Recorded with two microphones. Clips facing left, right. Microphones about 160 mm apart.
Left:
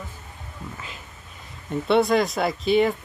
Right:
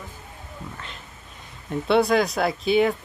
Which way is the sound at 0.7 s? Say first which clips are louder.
Even; 5° left (ahead or behind).